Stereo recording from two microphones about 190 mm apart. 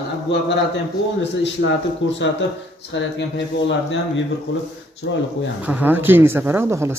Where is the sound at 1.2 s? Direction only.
65° left (ahead or behind).